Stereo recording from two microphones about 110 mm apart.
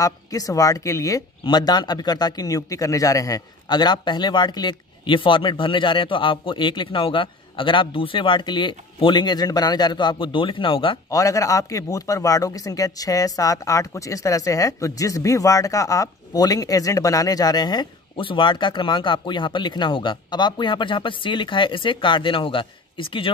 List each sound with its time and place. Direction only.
0.0 s speech: 35° left (ahead or behind)
1.4 s a man's voice: 40° left (ahead or behind)
11.1 s speech: 30° left (ahead or behind); by 23.3 s 50° left (ahead or behind)